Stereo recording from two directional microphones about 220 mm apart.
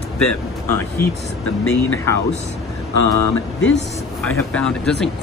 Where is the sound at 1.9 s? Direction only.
10° left (ahead or behind).